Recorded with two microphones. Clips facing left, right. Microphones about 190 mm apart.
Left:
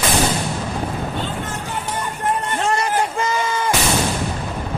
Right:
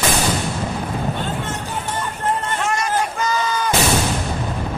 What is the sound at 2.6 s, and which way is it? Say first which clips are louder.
Music: left 2 dB; 30° left (ahead or behind).